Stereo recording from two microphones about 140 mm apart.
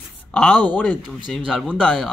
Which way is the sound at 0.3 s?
10° left (ahead or behind).